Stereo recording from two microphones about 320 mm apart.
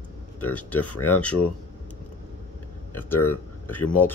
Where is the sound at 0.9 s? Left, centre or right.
Left.